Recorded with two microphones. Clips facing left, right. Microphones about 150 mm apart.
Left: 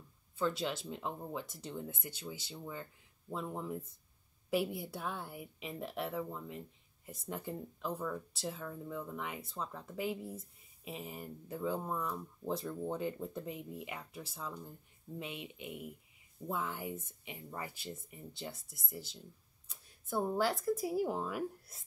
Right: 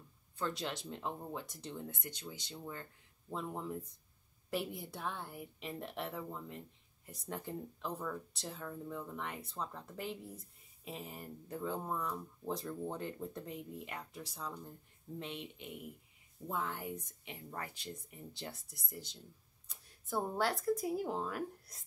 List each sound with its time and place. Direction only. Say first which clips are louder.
0.4 s speech: left 4 dB; centre (ahead or behind)